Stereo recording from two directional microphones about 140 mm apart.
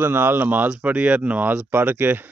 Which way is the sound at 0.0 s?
15° right (ahead or behind).